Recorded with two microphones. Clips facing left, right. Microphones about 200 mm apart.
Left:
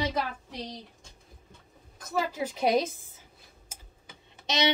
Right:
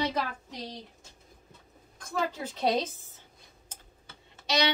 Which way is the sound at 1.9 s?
5° left (ahead or behind).